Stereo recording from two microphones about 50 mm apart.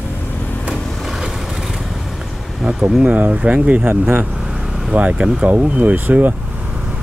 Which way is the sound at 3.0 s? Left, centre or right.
Right.